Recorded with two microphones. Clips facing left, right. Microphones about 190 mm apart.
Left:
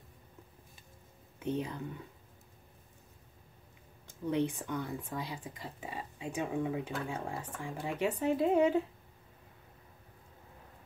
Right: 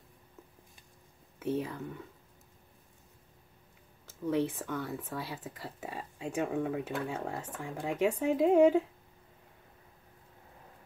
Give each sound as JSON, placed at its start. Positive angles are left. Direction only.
{"t": 1.4, "sound": "speech", "side_deg": -5}
{"t": 4.1, "sound": "speech", "side_deg": 0}